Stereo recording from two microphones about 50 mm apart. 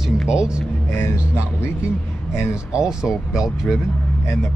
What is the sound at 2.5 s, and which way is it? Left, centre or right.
Speech, centre.